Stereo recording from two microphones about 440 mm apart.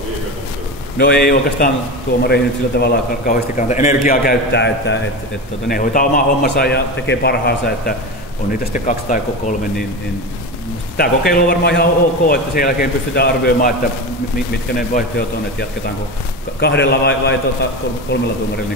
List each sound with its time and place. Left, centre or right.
0.9 s a man's voice: left
11.0 s a man's voice: centre
14.8 s a man's voice: centre
16.5 s a man's voice: left